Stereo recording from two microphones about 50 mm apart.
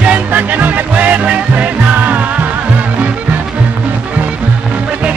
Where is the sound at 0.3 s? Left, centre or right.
Right.